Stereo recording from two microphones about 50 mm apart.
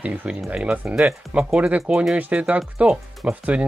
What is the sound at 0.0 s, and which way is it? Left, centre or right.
Speech, right.